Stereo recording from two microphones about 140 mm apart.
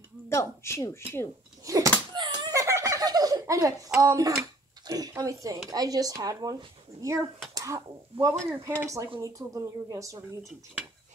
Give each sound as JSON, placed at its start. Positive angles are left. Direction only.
{"t": 0.3, "sound": "speech", "side_deg": 20}
{"t": 1.6, "sound": "a sound", "side_deg": -25}
{"t": 2.5, "sound": "speech", "side_deg": -20}
{"t": 7.5, "sound": "speech", "side_deg": -25}